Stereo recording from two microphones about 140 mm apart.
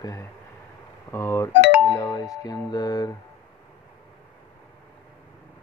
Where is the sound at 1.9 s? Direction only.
25° left (ahead or behind).